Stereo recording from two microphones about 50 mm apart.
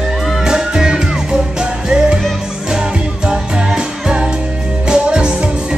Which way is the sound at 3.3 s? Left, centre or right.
Centre.